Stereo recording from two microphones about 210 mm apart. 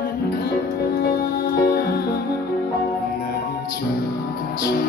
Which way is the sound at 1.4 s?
50° left (ahead or behind).